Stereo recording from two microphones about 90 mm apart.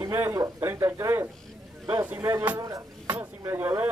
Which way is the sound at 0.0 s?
25° right (ahead or behind).